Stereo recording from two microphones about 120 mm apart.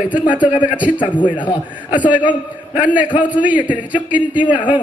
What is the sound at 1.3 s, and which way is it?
A man's voice, 40° left (ahead or behind).